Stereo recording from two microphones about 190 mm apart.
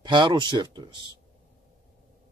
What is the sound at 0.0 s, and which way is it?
Speech, 25° right (ahead or behind).